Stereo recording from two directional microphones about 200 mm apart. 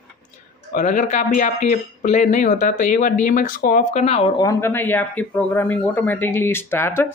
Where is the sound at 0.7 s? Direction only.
40° left (ahead or behind).